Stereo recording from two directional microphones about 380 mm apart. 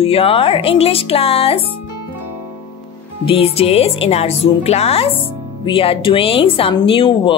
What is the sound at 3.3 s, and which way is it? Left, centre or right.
Speech, centre.